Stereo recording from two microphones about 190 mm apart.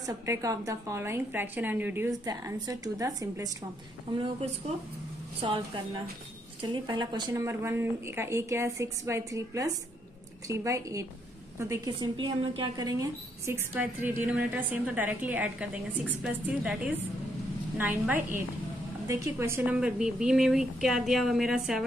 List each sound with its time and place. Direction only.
0.0 s a woman's voice: 15° right (ahead or behind)
5.4 s speech: 25° right (ahead or behind)
6.6 s a woman's voice: 25° right (ahead or behind)
13.7 s a woman's voice: 10° right (ahead or behind)